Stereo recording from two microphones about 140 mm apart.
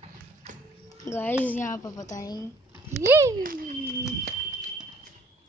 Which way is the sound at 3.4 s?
85° right.